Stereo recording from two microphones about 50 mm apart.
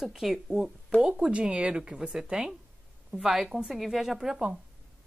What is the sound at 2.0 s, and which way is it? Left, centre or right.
Speech, centre.